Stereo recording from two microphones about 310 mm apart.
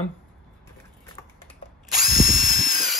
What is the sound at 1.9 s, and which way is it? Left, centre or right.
Drill, left.